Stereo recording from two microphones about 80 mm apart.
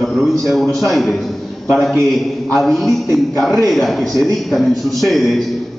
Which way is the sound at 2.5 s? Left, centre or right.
Centre.